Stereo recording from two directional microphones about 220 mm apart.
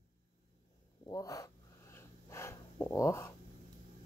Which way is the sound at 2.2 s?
10° left (ahead or behind).